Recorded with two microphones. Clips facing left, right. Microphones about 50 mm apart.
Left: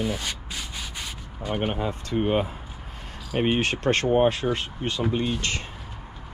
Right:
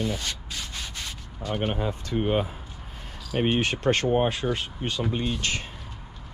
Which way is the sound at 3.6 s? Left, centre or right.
Left.